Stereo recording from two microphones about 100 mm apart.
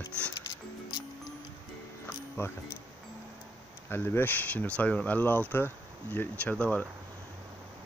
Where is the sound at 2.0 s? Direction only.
25° left (ahead or behind).